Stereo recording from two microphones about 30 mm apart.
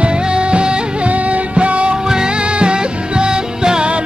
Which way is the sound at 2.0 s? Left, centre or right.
Right.